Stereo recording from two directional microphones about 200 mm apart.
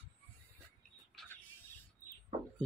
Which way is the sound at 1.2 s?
10° left (ahead or behind).